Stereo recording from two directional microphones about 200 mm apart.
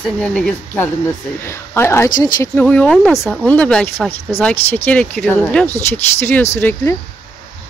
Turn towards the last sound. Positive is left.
turn(degrees=10)  # may be behind; listen again after turning